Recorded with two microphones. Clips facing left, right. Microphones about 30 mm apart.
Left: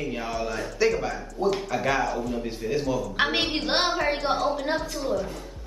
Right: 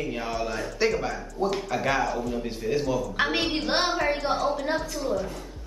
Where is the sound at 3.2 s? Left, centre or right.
Centre.